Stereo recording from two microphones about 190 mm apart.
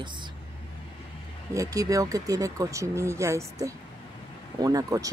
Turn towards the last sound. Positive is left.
turn(degrees=-20)  # may be behind; listen again after turning